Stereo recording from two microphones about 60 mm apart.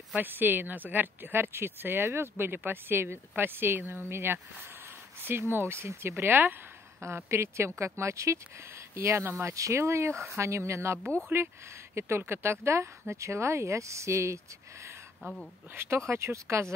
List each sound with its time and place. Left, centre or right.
0.2 s speech: right
7.2 s speech: right